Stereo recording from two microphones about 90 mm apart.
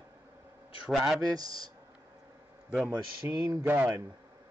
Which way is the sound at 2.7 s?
10° right (ahead or behind).